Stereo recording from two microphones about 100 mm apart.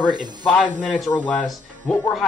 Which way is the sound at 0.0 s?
45° right (ahead or behind).